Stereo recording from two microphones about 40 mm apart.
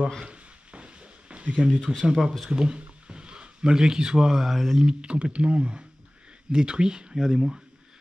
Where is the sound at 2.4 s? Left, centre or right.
Right; by 4.9 s centre.